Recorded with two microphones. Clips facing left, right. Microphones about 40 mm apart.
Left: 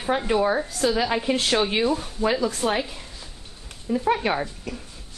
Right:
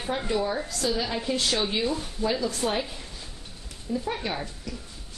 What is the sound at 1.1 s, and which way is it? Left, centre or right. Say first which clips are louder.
Speech: left 5 dB; left.